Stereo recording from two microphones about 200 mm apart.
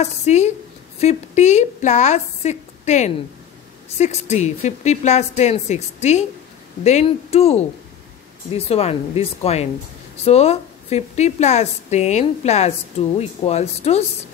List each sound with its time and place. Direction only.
0.0 s a woman's voice: 35° left (ahead or behind)